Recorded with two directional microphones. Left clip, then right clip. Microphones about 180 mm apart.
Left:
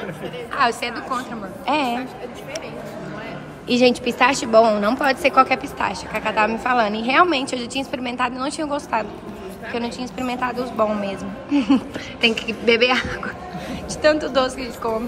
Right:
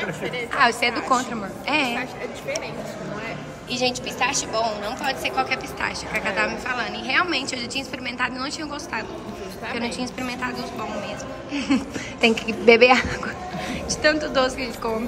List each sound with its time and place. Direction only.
0.6 s a woman's voice: centre (ahead or behind)
1.7 s a woman's voice: 10° left (ahead or behind)
3.6 s a woman's voice: 35° left (ahead or behind)
5.5 s a woman's voice: 10° left (ahead or behind)
12.2 s a woman's voice: 10° right (ahead or behind)
14.0 s a woman's voice: 5° left (ahead or behind)